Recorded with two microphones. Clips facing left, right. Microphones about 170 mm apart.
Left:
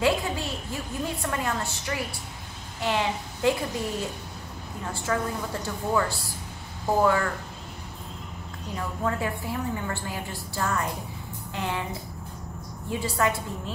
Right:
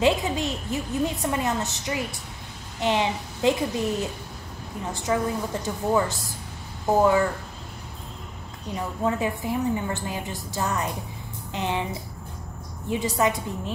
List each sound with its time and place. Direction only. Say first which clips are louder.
0.0 s a sound: right 3 dB; 20° right (ahead or behind)
1.2 s a woman's voice: right 3 dB; 20° right (ahead or behind)
4.8 s a woman's voice: right 3 dB; 15° right (ahead or behind)
8.7 s a woman's voice: right 3 dB; 20° right (ahead or behind)
12.9 s a woman's voice: right 3 dB; 20° right (ahead or behind)